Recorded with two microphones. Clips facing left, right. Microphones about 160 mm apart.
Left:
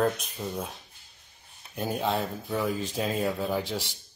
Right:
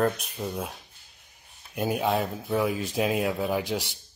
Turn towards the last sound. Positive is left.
turn(degrees=-10)  # may be behind; listen again after turning